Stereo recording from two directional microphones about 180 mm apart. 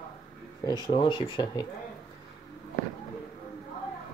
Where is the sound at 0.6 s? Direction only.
25° left (ahead or behind).